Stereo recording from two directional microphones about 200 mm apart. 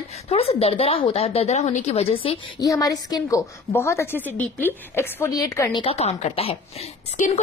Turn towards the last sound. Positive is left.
turn(degrees=40)  # may be behind; listen again after turning